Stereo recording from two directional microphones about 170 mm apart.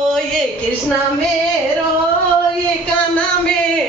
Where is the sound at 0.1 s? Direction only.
5° left (ahead or behind).